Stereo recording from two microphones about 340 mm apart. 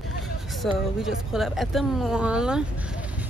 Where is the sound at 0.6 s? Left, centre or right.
Centre.